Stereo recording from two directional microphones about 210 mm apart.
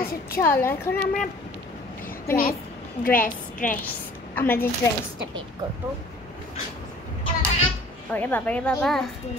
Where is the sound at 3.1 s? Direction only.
40° left (ahead or behind).